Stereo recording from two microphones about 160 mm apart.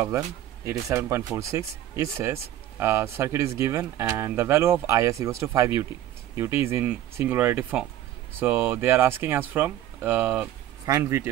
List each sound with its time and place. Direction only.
0.7 s speech: 15° right (ahead or behind)